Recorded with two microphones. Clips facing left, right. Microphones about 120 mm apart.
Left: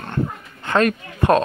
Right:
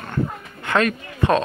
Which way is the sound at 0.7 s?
45° left (ahead or behind).